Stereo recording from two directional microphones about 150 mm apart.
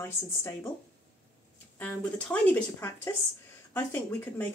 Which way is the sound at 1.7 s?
10° left (ahead or behind).